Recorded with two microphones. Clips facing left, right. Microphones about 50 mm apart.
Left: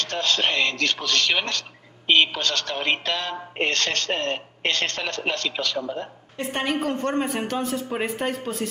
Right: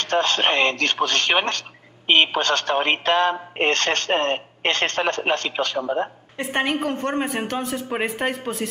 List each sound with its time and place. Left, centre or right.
0.0 s speech: right